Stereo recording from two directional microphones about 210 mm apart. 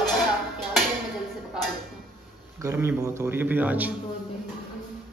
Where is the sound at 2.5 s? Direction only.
10° right (ahead or behind).